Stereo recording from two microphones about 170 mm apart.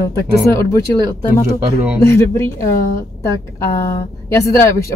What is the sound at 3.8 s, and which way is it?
Speech, 15° left (ahead or behind).